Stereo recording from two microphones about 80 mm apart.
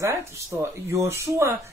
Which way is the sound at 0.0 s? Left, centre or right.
Right.